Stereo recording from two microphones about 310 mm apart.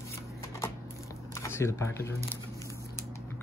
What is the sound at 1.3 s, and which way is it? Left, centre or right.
Speech, centre.